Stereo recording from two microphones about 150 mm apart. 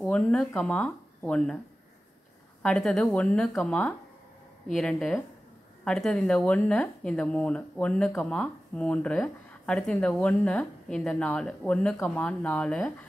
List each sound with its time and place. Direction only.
0.0 s speech: 10° left (ahead or behind)
2.6 s speech: 5° left (ahead or behind)